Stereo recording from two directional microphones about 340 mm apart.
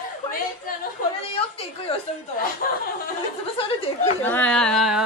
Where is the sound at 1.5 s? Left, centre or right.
Centre.